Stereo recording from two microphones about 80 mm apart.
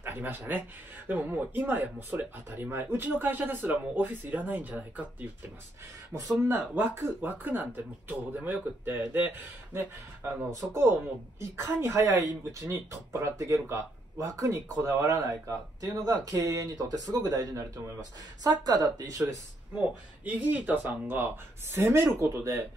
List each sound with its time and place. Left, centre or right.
0.0 s speech: right
6.1 s a woman's voice: right
6.7 s speech: right
10.5 s a woman's voice: right
20.2 s speech: right